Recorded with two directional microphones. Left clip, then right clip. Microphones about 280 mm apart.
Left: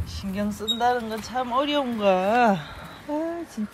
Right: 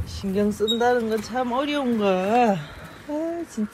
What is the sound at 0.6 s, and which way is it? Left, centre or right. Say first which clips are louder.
Speech: right 1 dB; centre.